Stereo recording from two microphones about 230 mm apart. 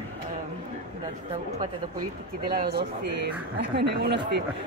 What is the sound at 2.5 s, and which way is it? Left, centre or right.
Speech, right.